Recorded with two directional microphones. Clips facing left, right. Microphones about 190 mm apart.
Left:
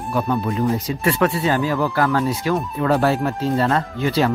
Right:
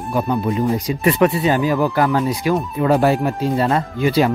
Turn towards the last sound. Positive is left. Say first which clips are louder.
# right 3 dB
turn(degrees=-15)  # may be behind; listen again after turning